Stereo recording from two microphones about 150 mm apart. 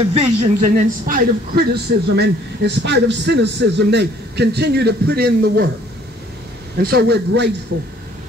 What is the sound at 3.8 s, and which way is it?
A man's voice, 90° right.